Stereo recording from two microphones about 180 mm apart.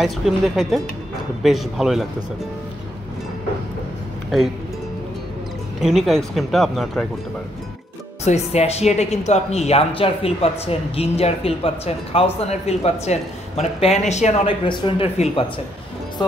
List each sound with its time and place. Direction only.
0.2 s speech: 5° right (ahead or behind)
5.8 s speech: centre (ahead or behind)
8.2 s speech: 35° left (ahead or behind)